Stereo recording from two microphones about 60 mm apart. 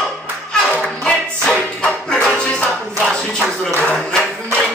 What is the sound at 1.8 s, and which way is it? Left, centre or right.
Music, centre.